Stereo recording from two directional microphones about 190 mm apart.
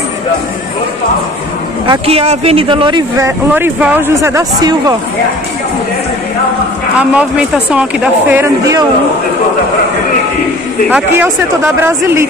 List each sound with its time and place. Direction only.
1.9 s speech: 30° right (ahead or behind)
7.2 s speech: 5° right (ahead or behind)
10.9 s speech: 10° right (ahead or behind)